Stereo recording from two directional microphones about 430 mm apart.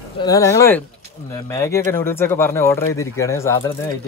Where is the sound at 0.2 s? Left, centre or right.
Centre.